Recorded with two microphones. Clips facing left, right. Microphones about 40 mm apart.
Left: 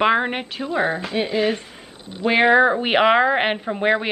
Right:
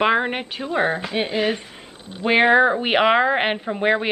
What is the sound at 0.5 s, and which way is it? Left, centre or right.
Speech, centre.